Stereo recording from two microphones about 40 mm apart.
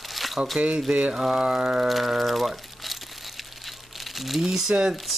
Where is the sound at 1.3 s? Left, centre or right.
Right.